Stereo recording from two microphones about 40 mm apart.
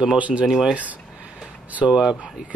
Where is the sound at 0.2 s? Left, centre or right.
Right.